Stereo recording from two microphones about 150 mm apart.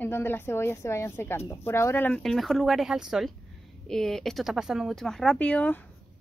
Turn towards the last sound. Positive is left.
turn(degrees=10)  # may be behind; listen again after turning